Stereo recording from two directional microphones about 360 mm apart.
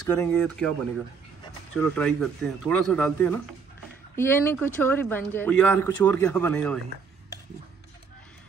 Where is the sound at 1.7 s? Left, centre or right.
Centre.